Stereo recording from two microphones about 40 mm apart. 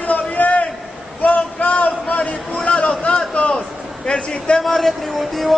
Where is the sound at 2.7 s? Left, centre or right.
Left.